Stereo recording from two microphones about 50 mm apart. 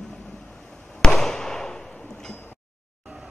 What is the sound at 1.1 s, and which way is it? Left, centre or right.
Fireworks, centre.